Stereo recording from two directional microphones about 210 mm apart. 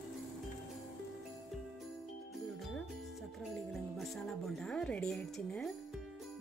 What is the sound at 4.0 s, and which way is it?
Music, centre (ahead or behind).